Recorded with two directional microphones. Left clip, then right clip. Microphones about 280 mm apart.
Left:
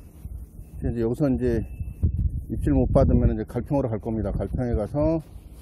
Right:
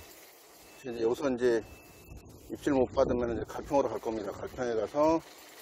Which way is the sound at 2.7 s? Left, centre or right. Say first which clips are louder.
Left 5 dB; centre.